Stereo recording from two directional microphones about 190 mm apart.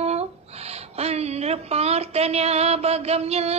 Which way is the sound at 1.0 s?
35° right (ahead or behind).